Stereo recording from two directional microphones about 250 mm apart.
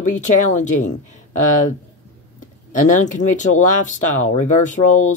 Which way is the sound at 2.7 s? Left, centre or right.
Left.